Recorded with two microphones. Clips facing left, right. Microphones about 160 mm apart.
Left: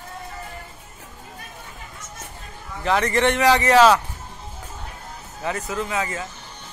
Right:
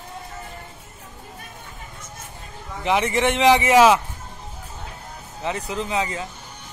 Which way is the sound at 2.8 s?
15° right (ahead or behind).